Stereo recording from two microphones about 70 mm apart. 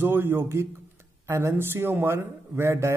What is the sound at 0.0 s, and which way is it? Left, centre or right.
A man's voice, right.